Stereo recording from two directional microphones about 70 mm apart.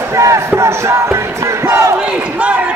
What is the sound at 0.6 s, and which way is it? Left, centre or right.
Music, right.